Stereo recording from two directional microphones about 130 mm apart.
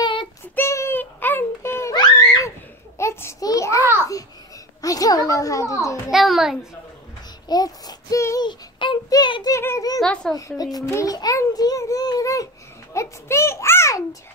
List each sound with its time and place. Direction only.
0.0 s child singing: 40° left (ahead or behind)
0.6 s a sound: 20° left (ahead or behind)
3.8 s a sound: 20° right (ahead or behind)
4.8 s a child's voice: 30° left (ahead or behind)
6.0 s a child's voice: centre (ahead or behind)
7.4 s child singing: 30° left (ahead or behind)
8.5 s child singing: 35° left (ahead or behind)
9.6 s a child's voice: 20° left (ahead or behind)
9.9 s a child's voice: 5° left (ahead or behind)
10.6 s a child's voice: 25° left (ahead or behind)